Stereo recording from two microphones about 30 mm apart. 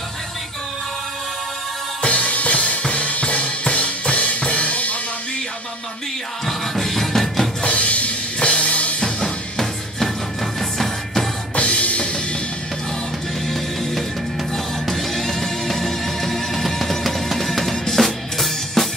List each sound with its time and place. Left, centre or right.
2.0 s music: left
2.5 s drum kit: left
6.4 s music: centre
7.6 s drum kit: left
9.0 s music: centre
11.5 s music: left
13.5 s music: centre
17.4 s drum: centre